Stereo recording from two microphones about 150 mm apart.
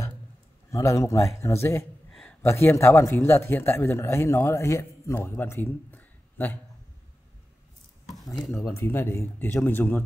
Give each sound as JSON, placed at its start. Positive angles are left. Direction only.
{"t": 0.7, "sound": "a man's voice", "side_deg": 20}
{"t": 2.0, "sound": "a sound", "side_deg": 5}
{"t": 2.4, "sound": "speech", "side_deg": 15}
{"t": 8.1, "sound": "speech", "side_deg": 0}
{"t": 8.7, "sound": "speech", "side_deg": 15}